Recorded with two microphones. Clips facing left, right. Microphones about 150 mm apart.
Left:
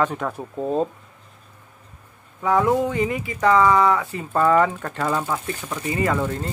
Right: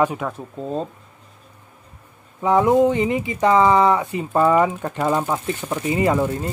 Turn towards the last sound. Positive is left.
turn(degrees=-15)  # may be behind; listen again after turning